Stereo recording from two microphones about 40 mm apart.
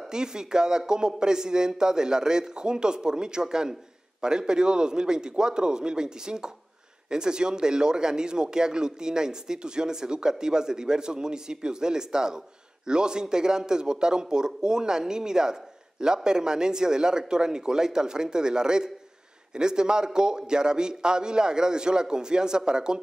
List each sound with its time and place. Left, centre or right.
0.1 s a man's voice: centre